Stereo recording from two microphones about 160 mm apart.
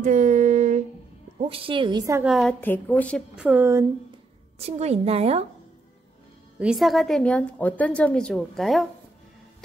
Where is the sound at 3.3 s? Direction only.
10° right (ahead or behind).